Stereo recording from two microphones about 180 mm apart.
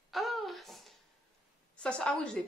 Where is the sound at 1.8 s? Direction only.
5° left (ahead or behind).